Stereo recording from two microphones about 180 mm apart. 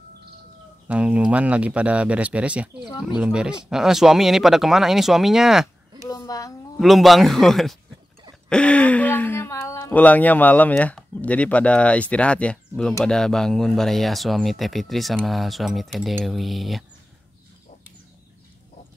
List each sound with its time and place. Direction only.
0.8 s speech: 5° right (ahead or behind)
6.0 s a woman's voice: 20° left (ahead or behind)
6.8 s speech: centre (ahead or behind)